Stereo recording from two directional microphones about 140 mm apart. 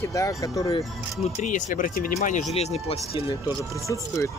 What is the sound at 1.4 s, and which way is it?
Speech, 70° left (ahead or behind).